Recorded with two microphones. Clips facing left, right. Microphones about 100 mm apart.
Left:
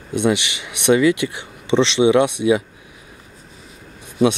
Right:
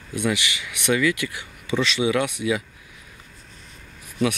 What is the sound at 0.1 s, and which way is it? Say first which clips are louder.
Speech: left 6 dB; 25° left (ahead or behind).